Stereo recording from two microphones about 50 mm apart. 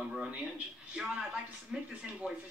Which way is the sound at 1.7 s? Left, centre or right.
Centre.